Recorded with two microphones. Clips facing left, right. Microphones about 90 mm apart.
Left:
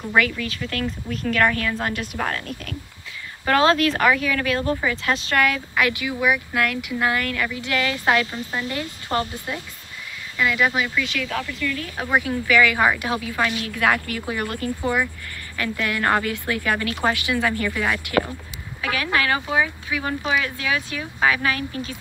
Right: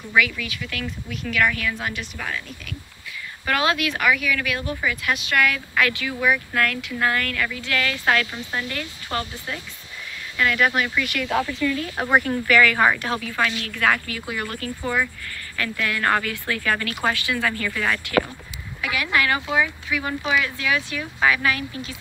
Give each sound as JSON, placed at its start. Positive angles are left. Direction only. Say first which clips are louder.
{"t": 0.1, "sound": "a woman's voice", "louder": "even", "side_deg": 40}
{"t": 3.4, "sound": "speech", "louder": "left 5 dB", "side_deg": 30}
{"t": 10.3, "sound": "speech", "louder": "even", "side_deg": 5}
{"t": 11.1, "sound": "speech", "louder": "right 3 dB", "side_deg": -10}
{"t": 12.2, "sound": "a woman's voice", "louder": "left 1 dB", "side_deg": 10}
{"t": 18.8, "sound": "a woman's voice", "louder": "even", "side_deg": 35}